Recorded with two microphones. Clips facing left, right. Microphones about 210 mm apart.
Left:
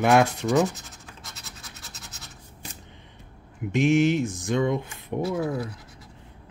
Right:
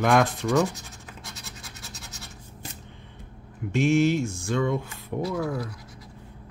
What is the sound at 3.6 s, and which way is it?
Speech, 15° left (ahead or behind).